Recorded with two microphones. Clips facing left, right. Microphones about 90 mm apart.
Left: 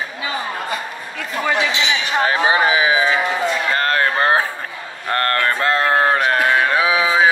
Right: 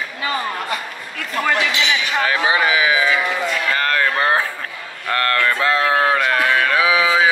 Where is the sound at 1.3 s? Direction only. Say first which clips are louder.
Right 1 dB; 5° left (ahead or behind).